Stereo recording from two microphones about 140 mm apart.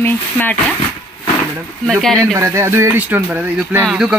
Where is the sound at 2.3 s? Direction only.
20° right (ahead or behind); by 4.1 s 5° right (ahead or behind).